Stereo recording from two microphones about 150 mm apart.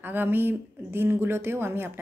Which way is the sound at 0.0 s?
15° right (ahead or behind).